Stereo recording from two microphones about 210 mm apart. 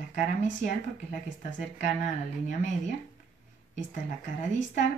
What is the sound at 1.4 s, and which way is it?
Speech, 35° left (ahead or behind).